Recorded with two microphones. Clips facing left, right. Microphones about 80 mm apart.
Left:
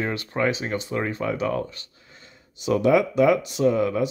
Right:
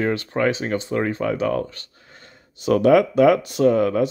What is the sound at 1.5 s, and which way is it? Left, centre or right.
Speech, right.